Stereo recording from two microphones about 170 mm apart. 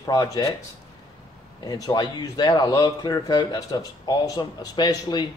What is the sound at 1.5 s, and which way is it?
A man's voice, 20° left (ahead or behind).